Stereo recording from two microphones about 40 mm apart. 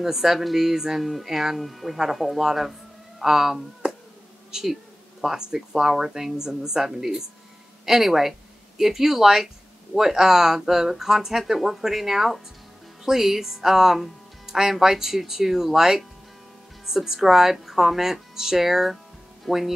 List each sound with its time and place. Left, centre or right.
0.0 s speech: centre
3.8 s a sound: centre
4.5 s insect: centre
5.2 s speech: centre